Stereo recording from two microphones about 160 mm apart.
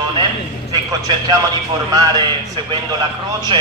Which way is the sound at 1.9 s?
25° right (ahead or behind).